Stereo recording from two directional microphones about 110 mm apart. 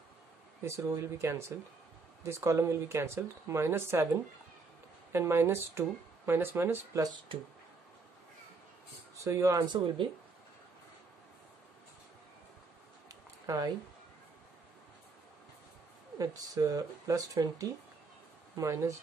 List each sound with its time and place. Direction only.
0.7 s speech: 25° right (ahead or behind)
9.2 s speech: 30° right (ahead or behind)
13.1 s a sound: 35° right (ahead or behind)
16.2 s speech: 35° right (ahead or behind)